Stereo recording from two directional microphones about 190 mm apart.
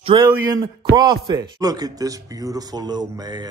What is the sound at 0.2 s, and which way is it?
Speech, 15° right (ahead or behind).